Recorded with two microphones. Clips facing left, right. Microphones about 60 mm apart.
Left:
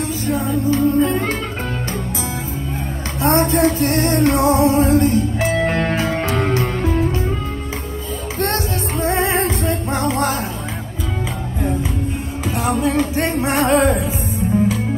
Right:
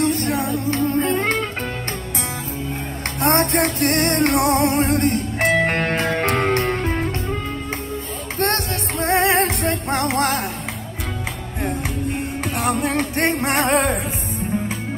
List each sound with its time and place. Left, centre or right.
0.0 s music: right
3.2 s music: right
8.4 s music: right
12.4 s music: right